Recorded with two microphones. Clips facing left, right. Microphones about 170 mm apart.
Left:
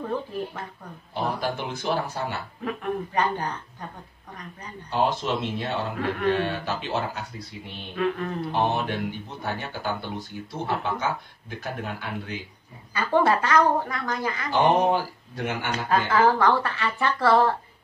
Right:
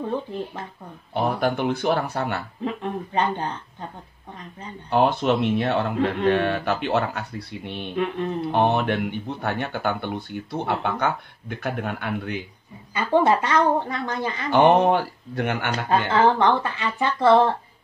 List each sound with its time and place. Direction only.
1.1 s a man's voice: 60° right (ahead or behind)
2.6 s speech: 25° right (ahead or behind)
4.8 s a man's voice: 60° right (ahead or behind)
7.9 s speech: 25° right (ahead or behind)
8.5 s a man's voice: 60° right (ahead or behind)
12.9 s speech: 20° right (ahead or behind)
14.5 s a man's voice: 65° right (ahead or behind)
15.7 s speech: 25° right (ahead or behind)